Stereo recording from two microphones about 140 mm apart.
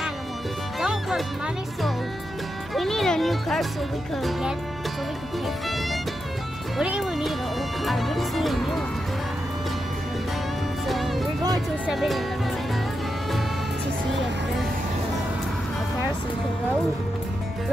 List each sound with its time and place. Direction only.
0.7 s music: centre (ahead or behind)
2.7 s speech: centre (ahead or behind)
6.8 s speech: 5° right (ahead or behind)
10.9 s music: centre (ahead or behind)
11.8 s speech: centre (ahead or behind)